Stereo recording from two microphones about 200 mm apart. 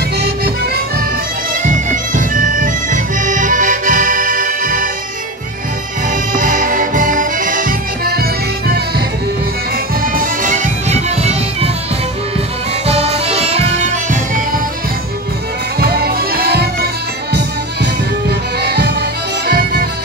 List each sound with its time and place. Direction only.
1.5 s bagpipes: 40° right (ahead or behind)
6.0 s music: 40° right (ahead or behind)
10.0 s music: 45° right (ahead or behind)
12.8 s music: 30° right (ahead or behind)
15.8 s music: 50° right (ahead or behind)
18.6 s music: 55° right (ahead or behind)